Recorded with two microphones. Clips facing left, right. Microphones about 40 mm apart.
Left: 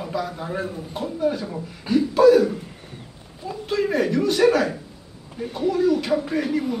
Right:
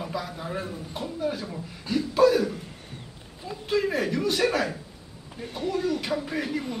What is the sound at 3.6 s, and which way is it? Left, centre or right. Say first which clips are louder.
A man's voice: left 3 dB; centre.